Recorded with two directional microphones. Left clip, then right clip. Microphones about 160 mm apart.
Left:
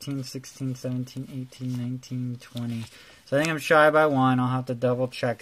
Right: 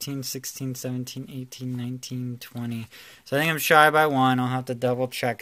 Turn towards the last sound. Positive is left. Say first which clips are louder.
# even
turn(degrees=0)  # may be behind; listen again after turning